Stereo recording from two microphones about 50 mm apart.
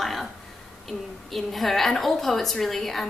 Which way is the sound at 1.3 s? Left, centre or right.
Centre.